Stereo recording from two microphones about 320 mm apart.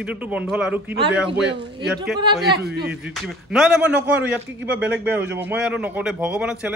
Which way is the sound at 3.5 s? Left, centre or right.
Centre.